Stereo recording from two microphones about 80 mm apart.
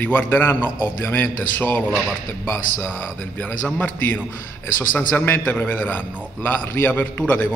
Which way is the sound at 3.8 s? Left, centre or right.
Centre.